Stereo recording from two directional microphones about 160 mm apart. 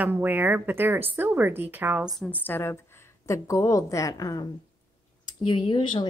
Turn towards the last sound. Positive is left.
turn(degrees=30)  # may be behind; listen again after turning